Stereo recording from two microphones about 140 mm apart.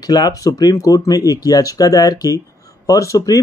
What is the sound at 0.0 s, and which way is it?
Speech, 30° left (ahead or behind).